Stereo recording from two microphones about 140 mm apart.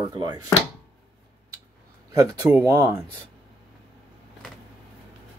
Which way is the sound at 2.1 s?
25° right (ahead or behind).